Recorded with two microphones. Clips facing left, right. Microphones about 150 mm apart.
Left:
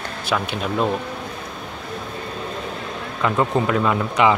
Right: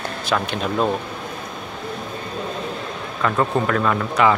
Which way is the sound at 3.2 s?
15° left (ahead or behind).